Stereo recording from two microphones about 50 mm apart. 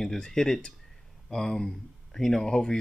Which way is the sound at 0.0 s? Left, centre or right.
Centre.